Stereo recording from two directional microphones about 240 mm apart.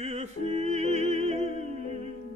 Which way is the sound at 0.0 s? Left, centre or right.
Right.